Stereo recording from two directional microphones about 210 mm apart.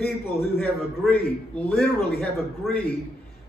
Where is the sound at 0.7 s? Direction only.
5° left (ahead or behind).